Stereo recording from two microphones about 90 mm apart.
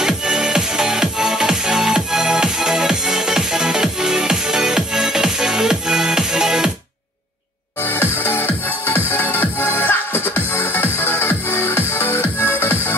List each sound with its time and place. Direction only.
0.0 s music: 5° right (ahead or behind)
7.8 s music: 25° left (ahead or behind)